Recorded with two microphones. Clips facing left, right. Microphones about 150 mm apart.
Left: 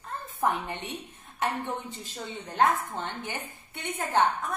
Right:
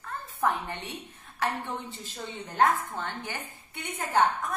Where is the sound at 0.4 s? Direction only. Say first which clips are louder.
Even; 15° left (ahead or behind).